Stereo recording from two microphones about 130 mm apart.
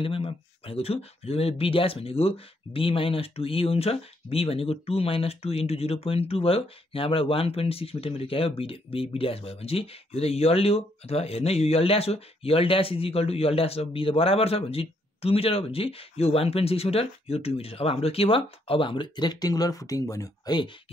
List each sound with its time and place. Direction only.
0.0 s speech: 45° left (ahead or behind)